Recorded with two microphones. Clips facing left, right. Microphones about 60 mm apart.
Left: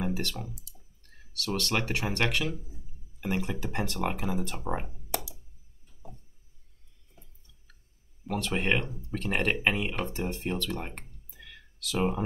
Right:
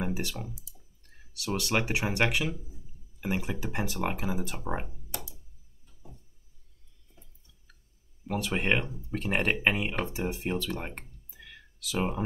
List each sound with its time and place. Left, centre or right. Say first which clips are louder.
0.0 s clicking: left 1 dB; centre
1.3 s speech: right 1 dB; centre
8.3 s speech: even; centre